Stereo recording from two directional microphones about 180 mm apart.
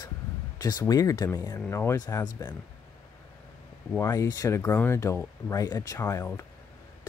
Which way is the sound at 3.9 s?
15° left (ahead or behind).